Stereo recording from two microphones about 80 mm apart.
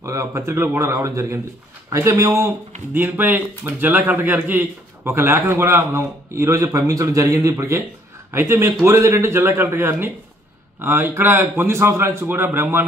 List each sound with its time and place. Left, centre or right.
0.0 s a man's voice: right
2.9 s a man's voice: right